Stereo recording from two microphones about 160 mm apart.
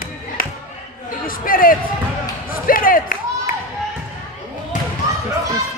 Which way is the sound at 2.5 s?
60° left (ahead or behind).